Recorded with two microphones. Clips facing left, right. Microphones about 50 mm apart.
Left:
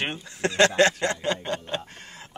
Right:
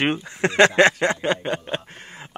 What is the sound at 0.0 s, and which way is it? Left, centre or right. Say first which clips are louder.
Speech: right 6 dB; right.